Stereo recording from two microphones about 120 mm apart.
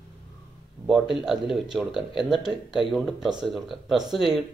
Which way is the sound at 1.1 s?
Centre (ahead or behind).